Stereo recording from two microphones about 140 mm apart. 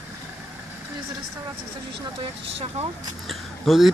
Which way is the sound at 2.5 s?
45° right (ahead or behind).